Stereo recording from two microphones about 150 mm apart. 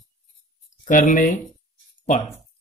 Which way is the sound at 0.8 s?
60° left (ahead or behind).